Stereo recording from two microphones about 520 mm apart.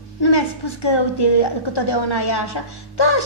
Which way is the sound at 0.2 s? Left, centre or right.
Left.